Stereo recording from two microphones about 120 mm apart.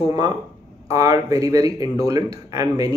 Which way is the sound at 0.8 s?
30° right (ahead or behind).